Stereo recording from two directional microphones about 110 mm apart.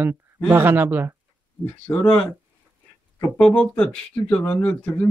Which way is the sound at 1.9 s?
25° left (ahead or behind).